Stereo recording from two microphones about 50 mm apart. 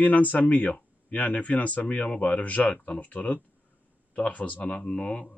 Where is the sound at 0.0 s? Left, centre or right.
Left.